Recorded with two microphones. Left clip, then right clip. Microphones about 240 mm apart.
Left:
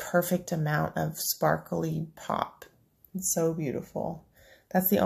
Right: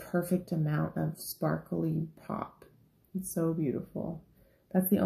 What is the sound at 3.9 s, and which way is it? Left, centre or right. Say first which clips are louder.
Speech: left 6 dB; left.